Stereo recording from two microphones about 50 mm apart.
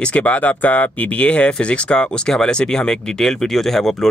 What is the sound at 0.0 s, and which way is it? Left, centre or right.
Speech, left.